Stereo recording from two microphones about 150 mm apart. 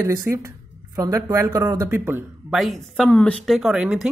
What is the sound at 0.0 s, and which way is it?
Speech, 20° right (ahead or behind).